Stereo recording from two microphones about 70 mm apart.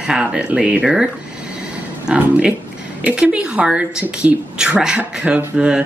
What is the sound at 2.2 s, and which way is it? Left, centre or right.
Speech, centre.